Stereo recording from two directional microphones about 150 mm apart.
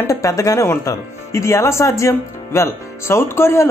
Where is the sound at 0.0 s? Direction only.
20° left (ahead or behind).